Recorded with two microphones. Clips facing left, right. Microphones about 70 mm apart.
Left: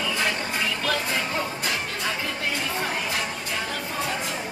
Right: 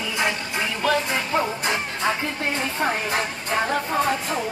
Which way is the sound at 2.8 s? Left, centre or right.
Right.